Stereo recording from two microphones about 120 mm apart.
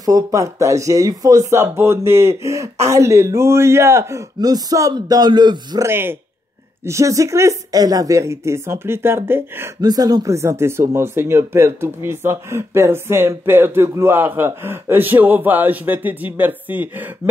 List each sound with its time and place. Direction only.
0.0 s speech: 30° right (ahead or behind)
5.9 s speech: 20° right (ahead or behind)
9.8 s speech: 35° right (ahead or behind); by 17.1 s 15° right (ahead or behind)